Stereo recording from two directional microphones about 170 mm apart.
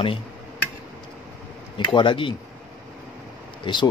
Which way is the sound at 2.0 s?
30° left (ahead or behind).